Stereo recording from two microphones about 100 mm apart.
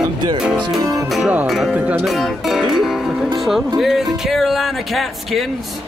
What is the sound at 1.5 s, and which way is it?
Speech, 5° right (ahead or behind).